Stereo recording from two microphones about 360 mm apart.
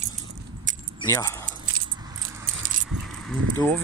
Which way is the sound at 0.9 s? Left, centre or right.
Centre.